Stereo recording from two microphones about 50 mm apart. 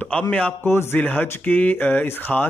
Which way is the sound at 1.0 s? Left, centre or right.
Left.